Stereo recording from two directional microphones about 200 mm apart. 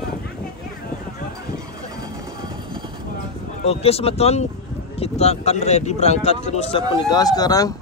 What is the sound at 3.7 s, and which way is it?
Speech, 30° left (ahead or behind).